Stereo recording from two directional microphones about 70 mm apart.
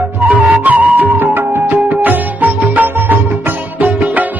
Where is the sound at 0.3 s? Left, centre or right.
Right.